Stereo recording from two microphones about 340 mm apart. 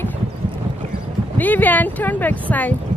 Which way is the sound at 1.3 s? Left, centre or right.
Centre.